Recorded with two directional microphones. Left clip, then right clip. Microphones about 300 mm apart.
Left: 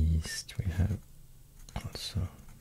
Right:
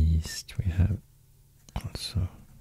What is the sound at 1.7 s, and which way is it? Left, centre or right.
Whispering, centre.